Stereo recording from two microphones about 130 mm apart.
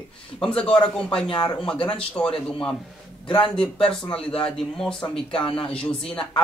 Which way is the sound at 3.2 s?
40° left (ahead or behind).